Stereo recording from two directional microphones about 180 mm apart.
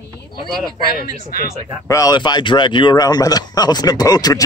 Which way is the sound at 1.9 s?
20° left (ahead or behind).